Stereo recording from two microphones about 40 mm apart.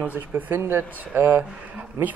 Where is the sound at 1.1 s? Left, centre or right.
Right.